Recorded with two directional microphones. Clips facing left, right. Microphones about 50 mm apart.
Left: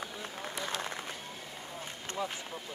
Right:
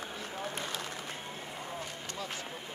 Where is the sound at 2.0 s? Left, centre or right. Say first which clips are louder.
Left 3 dB; left.